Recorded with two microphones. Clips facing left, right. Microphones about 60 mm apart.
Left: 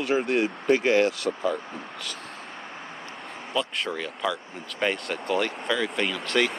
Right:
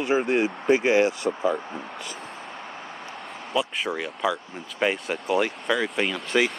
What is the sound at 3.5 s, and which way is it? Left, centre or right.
Speech, centre.